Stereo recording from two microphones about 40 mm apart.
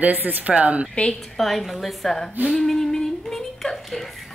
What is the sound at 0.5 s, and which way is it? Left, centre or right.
Speech, right.